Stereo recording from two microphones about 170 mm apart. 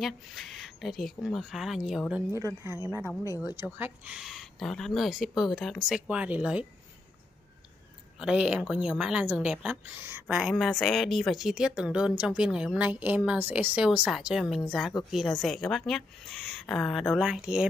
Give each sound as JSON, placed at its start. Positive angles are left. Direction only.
{"t": 0.0, "sound": "speech", "side_deg": 0}
{"t": 2.3, "sound": "speech", "side_deg": -15}
{"t": 8.2, "sound": "speech", "side_deg": -5}